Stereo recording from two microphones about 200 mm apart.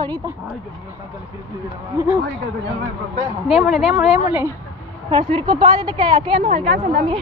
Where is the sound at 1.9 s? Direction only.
10° right (ahead or behind).